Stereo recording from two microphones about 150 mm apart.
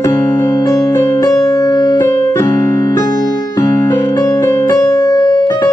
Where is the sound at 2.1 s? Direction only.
15° left (ahead or behind).